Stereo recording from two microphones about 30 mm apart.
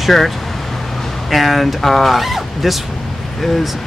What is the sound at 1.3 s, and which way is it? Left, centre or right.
Speech, centre.